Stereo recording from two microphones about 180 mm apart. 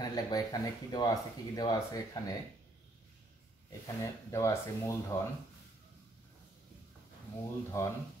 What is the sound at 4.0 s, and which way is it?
Speech, 15° left (ahead or behind).